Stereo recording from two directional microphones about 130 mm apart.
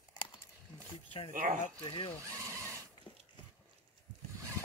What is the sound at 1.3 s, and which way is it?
Speech, 90° right.